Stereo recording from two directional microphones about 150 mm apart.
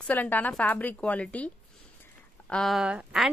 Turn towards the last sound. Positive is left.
turn(degrees=-5)  # may be behind; listen again after turning